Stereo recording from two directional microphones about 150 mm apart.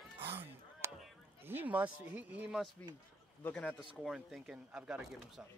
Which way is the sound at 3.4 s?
10° left (ahead or behind).